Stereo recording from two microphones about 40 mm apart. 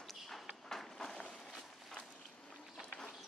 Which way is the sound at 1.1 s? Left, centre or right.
Left.